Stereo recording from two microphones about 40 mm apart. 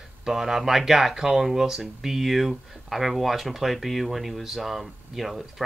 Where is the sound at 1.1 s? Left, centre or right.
Centre.